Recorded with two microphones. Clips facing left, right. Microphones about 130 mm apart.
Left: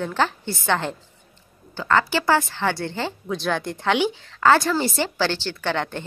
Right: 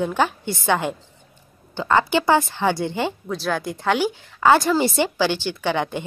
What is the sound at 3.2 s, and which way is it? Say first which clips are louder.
A woman's voice: even; 5° right (ahead or behind).